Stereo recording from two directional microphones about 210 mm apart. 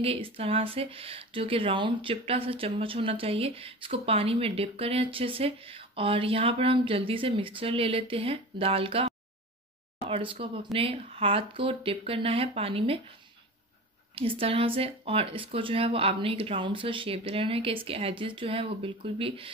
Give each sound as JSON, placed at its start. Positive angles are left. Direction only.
{"t": 0.0, "sound": "speech", "side_deg": -25}
{"t": 14.1, "sound": "speech", "side_deg": -25}